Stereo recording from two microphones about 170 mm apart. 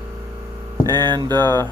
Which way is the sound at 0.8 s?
25° right (ahead or behind).